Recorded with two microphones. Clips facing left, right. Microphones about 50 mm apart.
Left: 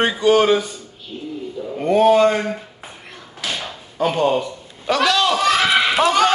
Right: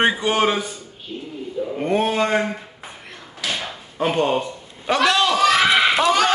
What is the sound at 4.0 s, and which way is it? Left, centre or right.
A man's voice, centre.